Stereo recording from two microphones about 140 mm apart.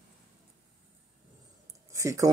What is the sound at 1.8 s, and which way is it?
Speech, 20° right (ahead or behind).